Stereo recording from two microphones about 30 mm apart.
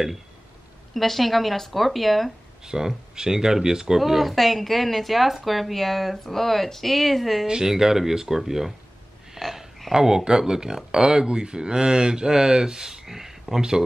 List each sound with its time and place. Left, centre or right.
0.9 s speech: centre
2.6 s speech: right
4.0 s speech: centre
7.4 s speech: right
7.7 s speech: centre